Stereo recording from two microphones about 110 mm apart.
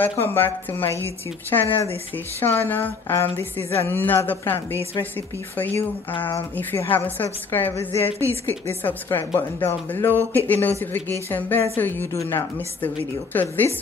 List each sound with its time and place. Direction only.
0.0 s a woman's voice: 20° left (ahead or behind)